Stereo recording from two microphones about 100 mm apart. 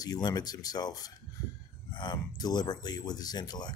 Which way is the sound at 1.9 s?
50° left (ahead or behind).